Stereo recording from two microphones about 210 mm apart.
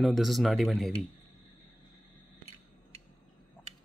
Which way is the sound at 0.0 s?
Centre (ahead or behind).